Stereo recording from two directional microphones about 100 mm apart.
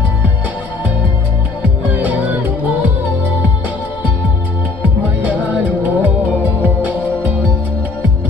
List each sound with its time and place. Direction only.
1.6 s music: 15° right (ahead or behind)
5.5 s music: 15° right (ahead or behind)